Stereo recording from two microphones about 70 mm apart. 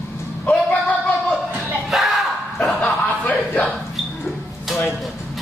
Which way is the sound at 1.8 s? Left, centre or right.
Centre.